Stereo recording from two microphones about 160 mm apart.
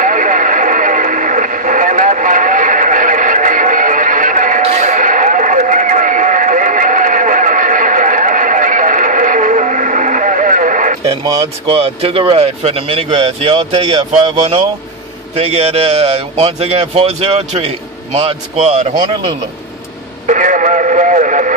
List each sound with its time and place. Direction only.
0.0 s radio: 55° right (ahead or behind)
4.6 s a sound: 45° right (ahead or behind)
11.6 s a man's voice: 40° right (ahead or behind)
15.3 s a man's voice: 40° right (ahead or behind)
20.2 s speech: 50° right (ahead or behind)